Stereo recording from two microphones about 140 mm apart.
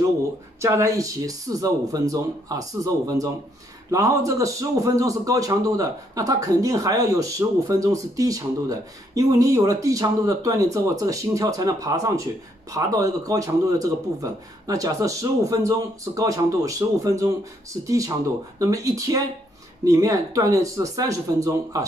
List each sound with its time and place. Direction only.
0.6 s a man's voice: 20° right (ahead or behind)